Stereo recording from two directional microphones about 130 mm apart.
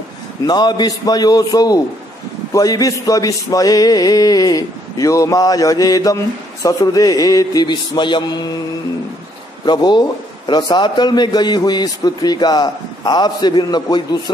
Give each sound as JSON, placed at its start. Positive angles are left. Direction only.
{"t": 0.5, "sound": "speech", "side_deg": 30}
{"t": 9.7, "sound": "a man's voice", "side_deg": 30}